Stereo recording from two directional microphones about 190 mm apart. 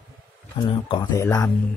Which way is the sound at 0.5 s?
25° left (ahead or behind).